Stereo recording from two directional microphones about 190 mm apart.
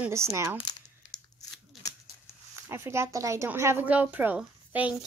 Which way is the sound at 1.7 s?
Centre (ahead or behind).